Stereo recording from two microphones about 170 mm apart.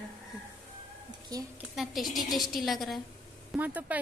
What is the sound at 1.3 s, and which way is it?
Speech, 20° right (ahead or behind).